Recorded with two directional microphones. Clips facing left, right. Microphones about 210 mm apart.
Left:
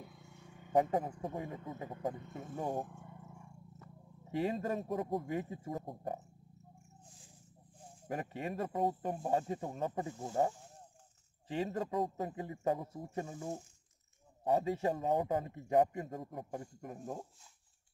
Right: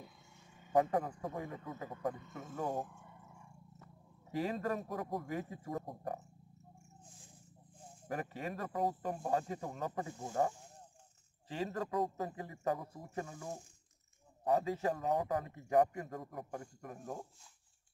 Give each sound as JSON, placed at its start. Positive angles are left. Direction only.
{"t": 0.2, "sound": "a sound", "side_deg": 60}
{"t": 0.7, "sound": "a man's voice", "side_deg": 25}
{"t": 4.3, "sound": "a man's voice", "side_deg": 25}
{"t": 8.1, "sound": "a man's voice", "side_deg": 25}